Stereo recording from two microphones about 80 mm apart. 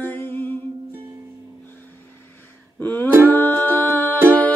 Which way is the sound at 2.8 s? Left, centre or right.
Left.